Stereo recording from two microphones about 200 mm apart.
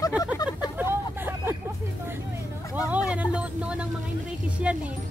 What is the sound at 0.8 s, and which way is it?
Vehicle, 10° right (ahead or behind).